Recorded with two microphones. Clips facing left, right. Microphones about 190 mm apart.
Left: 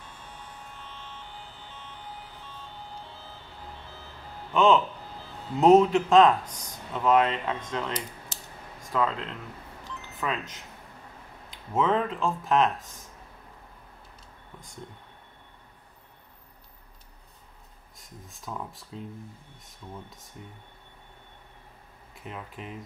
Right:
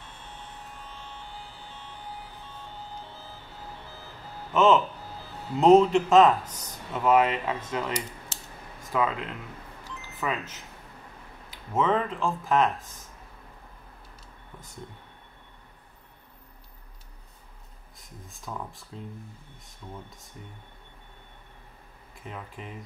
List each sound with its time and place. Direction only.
0.2 s a sound: 25° right (ahead or behind)
1.6 s a sound: 10° right (ahead or behind)
4.5 s speech: 5° right (ahead or behind)
8.9 s speech: 10° right (ahead or behind)
17.9 s speech: centre (ahead or behind)
22.1 s speech: centre (ahead or behind)